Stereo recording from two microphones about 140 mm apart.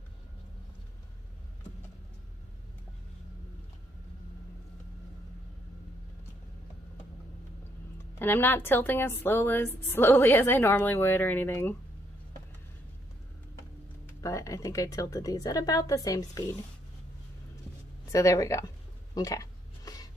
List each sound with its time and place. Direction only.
8.2 s a woman's voice: 15° left (ahead or behind)
14.2 s a woman's voice: 20° left (ahead or behind)
18.1 s a woman's voice: 25° left (ahead or behind)
19.1 s a sound: 25° left (ahead or behind)